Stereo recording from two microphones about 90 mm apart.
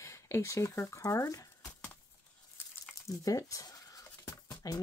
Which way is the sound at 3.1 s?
40° left (ahead or behind).